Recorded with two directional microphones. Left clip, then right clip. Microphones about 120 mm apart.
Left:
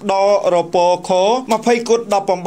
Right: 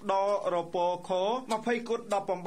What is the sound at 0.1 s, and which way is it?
Speech, 25° left (ahead or behind).